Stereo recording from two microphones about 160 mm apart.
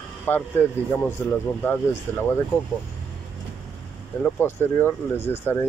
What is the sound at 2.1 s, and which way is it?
Speech, 15° left (ahead or behind).